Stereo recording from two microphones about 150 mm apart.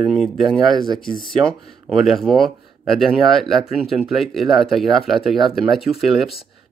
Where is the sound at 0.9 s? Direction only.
30° left (ahead or behind).